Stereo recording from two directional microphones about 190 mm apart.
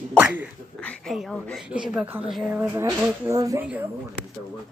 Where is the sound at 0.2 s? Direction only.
10° right (ahead or behind).